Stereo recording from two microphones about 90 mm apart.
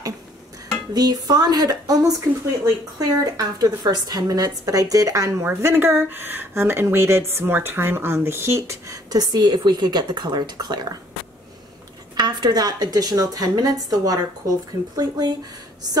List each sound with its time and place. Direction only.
0.9 s speech: 45° right (ahead or behind)
12.2 s a woman's voice: 50° right (ahead or behind)